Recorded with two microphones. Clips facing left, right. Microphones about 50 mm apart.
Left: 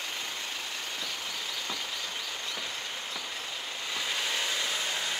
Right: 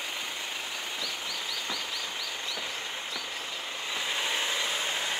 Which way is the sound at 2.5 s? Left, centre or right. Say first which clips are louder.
Right 1 dB; right.